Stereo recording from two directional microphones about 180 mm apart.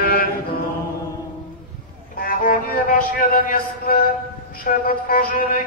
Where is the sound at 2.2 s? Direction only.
50° left (ahead or behind).